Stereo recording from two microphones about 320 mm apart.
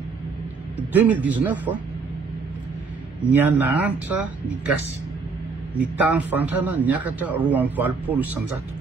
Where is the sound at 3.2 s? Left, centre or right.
Centre.